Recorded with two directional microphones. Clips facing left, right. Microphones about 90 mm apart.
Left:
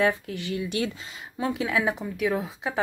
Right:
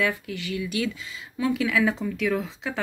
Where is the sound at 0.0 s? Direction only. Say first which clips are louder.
Left 2 dB; 25° left (ahead or behind).